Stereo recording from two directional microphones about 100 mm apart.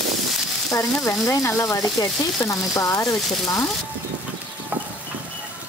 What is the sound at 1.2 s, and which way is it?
Frying, 35° left (ahead or behind).